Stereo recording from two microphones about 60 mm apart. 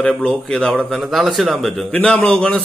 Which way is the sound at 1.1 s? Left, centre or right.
Centre.